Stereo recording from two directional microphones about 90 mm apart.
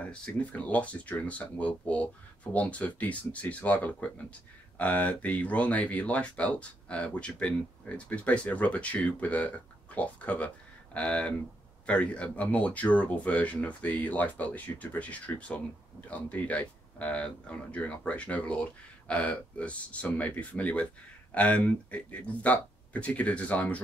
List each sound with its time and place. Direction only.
0.0 s speech: 15° left (ahead or behind)